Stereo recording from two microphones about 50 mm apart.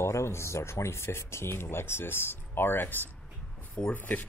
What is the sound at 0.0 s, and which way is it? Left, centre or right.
Speech, left.